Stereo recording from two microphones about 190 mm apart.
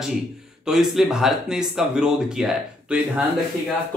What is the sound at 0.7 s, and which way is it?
Speech, centre (ahead or behind).